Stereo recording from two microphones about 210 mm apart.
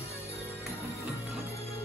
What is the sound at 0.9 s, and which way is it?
Music, 15° right (ahead or behind).